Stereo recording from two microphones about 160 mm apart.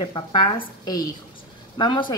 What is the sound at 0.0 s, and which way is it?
A woman's voice, 30° left (ahead or behind).